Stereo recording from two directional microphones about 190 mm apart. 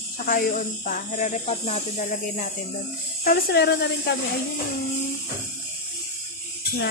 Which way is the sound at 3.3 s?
60° left (ahead or behind).